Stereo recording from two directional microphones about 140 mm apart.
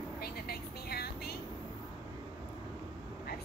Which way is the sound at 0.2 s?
90° left.